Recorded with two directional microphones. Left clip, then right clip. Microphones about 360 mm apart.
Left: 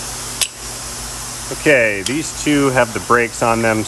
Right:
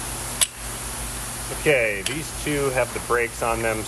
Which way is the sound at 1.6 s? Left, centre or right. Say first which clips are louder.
Left 7 dB; left.